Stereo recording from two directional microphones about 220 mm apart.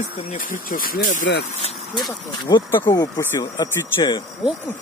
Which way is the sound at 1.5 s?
30° left (ahead or behind).